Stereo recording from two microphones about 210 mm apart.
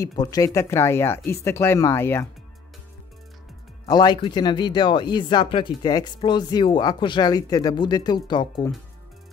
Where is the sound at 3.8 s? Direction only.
20° left (ahead or behind).